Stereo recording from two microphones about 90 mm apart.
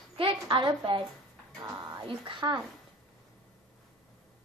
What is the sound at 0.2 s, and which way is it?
Speech, 75° right (ahead or behind).